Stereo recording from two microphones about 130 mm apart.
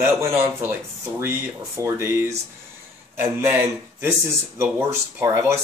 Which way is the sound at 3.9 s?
20° right (ahead or behind).